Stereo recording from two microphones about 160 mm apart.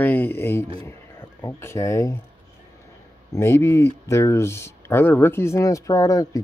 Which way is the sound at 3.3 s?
15° left (ahead or behind).